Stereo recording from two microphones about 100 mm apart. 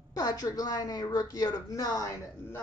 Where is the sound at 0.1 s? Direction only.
40° left (ahead or behind).